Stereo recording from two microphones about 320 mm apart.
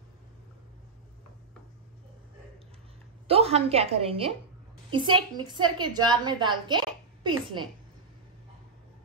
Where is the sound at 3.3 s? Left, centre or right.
Centre.